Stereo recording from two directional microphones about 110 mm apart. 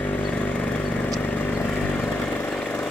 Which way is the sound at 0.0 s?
15° left (ahead or behind).